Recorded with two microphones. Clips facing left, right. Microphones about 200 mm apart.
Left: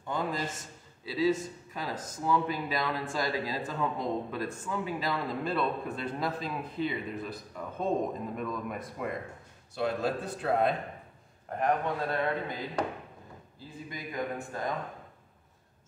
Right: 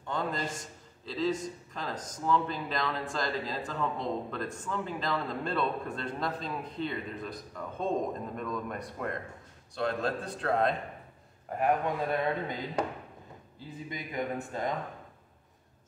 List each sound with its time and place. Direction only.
0.0 s a man's voice: 5° left (ahead or behind)
11.4 s speech: 5° right (ahead or behind)